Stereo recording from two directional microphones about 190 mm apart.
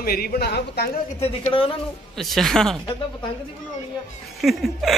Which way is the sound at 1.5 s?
30° left (ahead or behind).